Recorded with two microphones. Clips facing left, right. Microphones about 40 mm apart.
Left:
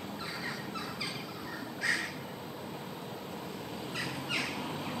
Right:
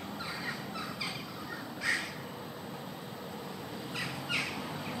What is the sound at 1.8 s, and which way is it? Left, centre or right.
Crow, centre.